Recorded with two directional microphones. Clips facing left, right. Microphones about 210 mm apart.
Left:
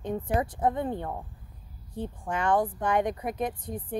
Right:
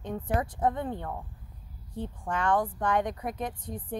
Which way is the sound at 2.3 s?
10° left (ahead or behind).